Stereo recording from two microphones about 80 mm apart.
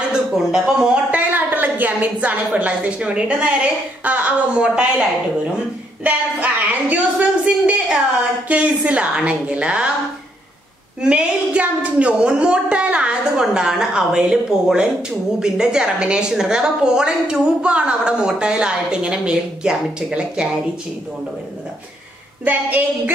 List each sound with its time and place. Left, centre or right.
0.1 s speech: centre
1.1 s a woman's voice: right
6.0 s a woman's voice: centre
11.0 s a woman's voice: centre
22.4 s a woman's voice: right